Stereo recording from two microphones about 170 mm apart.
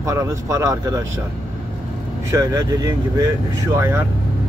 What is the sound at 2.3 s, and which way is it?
Speech, 20° right (ahead or behind).